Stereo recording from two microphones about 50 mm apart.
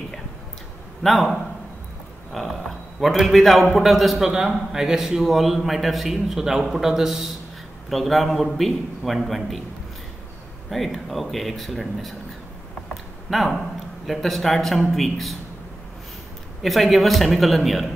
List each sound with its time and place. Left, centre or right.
1.0 s a man's voice: centre
4.3 s a man's voice: centre
10.7 s a man's voice: centre
13.3 s a man's voice: centre
16.6 s a man's voice: centre